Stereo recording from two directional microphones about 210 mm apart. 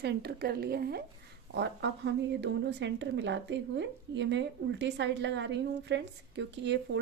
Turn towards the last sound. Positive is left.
turn(degrees=-55)  # may be behind; listen again after turning